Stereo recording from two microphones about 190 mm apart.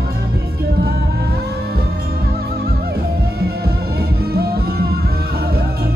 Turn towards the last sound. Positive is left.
turn(degrees=-55)  # may be behind; listen again after turning